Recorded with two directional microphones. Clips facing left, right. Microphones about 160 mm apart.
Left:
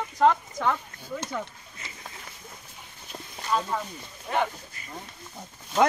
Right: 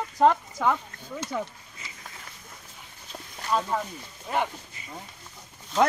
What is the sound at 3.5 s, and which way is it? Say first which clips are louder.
Speech: right 1 dB; 5° right (ahead or behind).